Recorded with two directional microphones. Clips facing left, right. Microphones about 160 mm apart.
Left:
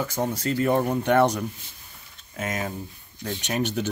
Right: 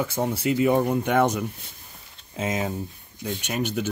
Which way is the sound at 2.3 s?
20° right (ahead or behind).